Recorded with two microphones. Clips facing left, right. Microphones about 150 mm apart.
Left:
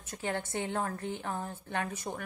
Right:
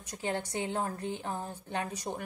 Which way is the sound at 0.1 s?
15° right (ahead or behind).